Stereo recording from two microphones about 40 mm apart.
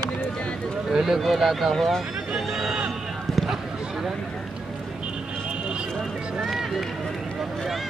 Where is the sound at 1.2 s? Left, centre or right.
Centre.